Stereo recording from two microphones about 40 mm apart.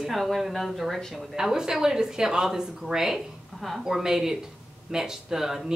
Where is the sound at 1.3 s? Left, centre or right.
Centre.